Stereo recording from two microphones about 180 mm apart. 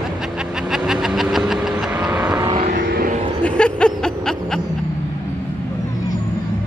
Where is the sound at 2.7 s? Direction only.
60° right (ahead or behind).